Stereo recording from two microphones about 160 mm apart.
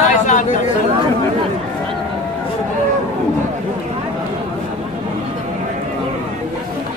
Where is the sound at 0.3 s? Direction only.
50° left (ahead or behind).